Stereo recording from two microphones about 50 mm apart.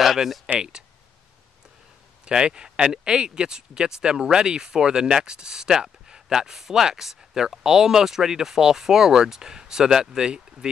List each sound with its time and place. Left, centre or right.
0.0 s a sound: centre
0.6 s speech: centre
2.2 s speech: centre